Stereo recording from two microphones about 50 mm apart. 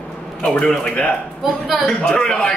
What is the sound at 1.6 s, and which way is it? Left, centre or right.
Speech, centre.